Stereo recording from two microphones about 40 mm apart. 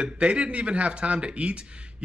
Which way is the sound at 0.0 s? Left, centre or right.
Right.